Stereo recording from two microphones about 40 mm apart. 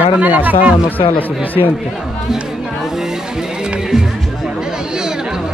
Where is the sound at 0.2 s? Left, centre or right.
Right.